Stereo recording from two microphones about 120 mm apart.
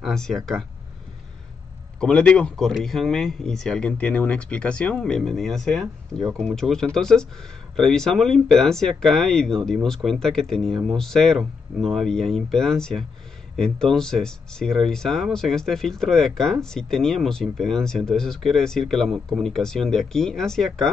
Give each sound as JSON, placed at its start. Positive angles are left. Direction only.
{"t": 0.0, "sound": "speech", "side_deg": 5}
{"t": 2.0, "sound": "speech", "side_deg": 10}